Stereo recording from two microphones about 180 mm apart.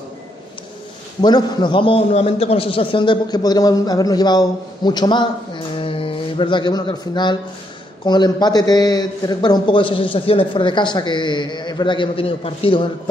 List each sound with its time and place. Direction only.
1.2 s a man's voice: 25° left (ahead or behind)